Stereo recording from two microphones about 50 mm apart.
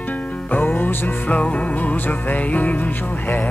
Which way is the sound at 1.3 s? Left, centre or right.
Left.